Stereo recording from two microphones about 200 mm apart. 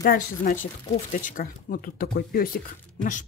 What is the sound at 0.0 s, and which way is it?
Speech, 45° left (ahead or behind).